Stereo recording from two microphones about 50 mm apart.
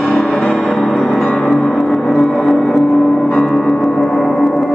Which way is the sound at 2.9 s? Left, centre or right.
Centre.